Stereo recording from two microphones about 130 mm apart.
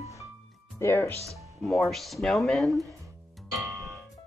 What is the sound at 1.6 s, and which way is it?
Speech, centre (ahead or behind).